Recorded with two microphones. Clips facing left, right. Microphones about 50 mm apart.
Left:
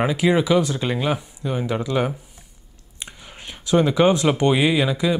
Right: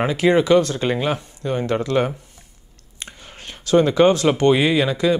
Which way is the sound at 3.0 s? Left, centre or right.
Centre.